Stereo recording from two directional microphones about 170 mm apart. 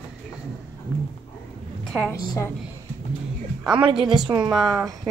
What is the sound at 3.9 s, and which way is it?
Speech, 5° right (ahead or behind).